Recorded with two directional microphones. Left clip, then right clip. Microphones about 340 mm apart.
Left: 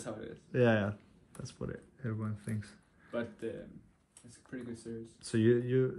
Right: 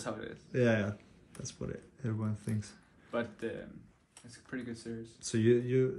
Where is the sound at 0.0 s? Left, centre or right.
Centre.